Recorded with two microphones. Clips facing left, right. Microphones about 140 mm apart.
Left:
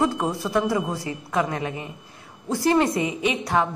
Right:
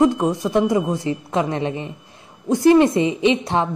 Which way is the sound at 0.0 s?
20° right (ahead or behind).